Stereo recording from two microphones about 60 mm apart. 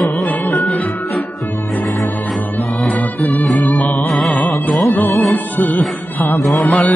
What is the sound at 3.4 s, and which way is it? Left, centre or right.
Music, centre.